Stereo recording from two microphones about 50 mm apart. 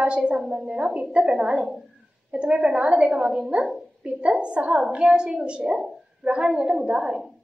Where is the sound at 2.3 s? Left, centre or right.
Right.